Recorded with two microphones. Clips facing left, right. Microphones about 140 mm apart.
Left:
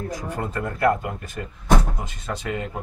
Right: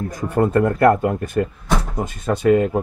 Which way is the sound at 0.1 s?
55° right (ahead or behind).